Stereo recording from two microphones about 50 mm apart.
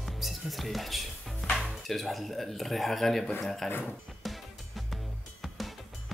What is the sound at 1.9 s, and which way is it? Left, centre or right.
Speech, centre.